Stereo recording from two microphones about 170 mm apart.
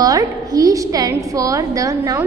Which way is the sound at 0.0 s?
20° right (ahead or behind).